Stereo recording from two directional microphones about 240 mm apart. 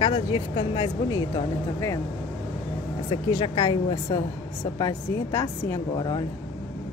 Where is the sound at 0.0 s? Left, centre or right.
Centre.